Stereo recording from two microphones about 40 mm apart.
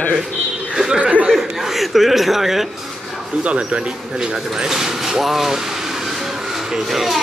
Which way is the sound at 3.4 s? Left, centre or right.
Right.